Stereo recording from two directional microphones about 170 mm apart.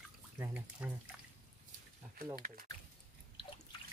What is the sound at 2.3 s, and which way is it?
Speech, 60° right (ahead or behind).